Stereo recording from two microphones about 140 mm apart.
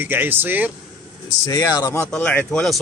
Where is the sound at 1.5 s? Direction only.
25° left (ahead or behind).